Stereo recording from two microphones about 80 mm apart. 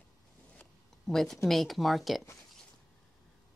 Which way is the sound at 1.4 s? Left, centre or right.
Centre.